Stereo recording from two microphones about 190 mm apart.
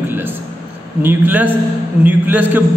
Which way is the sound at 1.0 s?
10° right (ahead or behind).